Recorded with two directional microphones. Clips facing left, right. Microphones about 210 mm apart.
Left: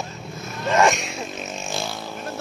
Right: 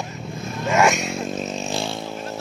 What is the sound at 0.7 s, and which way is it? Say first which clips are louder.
Speech: even; 5° right (ahead or behind).